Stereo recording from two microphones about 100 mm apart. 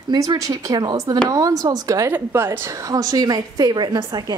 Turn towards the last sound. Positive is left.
turn(degrees=-40)  # may be behind; listen again after turning